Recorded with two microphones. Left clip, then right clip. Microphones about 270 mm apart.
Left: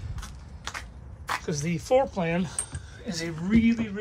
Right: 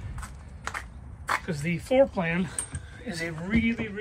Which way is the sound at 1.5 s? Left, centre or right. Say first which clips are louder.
Left 7 dB; centre.